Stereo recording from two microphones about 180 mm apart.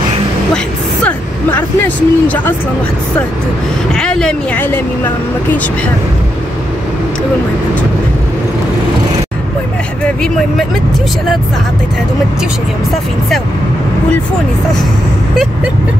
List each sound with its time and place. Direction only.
1.0 s speech: 10° left (ahead or behind)
3.9 s speech: 5° left (ahead or behind)